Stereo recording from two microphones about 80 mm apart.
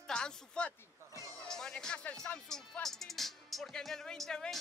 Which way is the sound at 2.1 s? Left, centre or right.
Centre.